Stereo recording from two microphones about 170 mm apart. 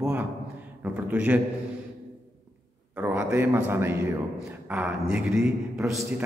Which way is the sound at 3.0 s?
15° right (ahead or behind).